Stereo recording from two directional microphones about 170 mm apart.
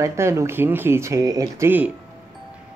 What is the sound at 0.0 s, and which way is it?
Speech, 15° right (ahead or behind).